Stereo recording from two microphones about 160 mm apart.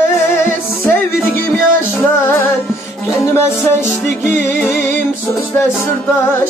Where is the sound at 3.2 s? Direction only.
15° left (ahead or behind).